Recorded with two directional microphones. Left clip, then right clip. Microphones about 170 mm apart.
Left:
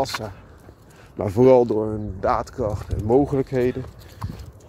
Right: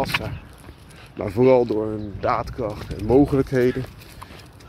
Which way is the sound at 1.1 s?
55° left (ahead or behind).